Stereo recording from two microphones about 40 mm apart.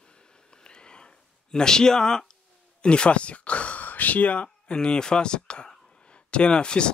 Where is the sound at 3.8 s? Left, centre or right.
Left.